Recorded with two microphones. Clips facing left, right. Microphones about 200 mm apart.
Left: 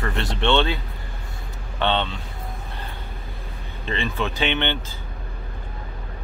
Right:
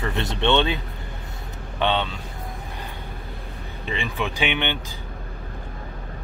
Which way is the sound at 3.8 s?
15° right (ahead or behind).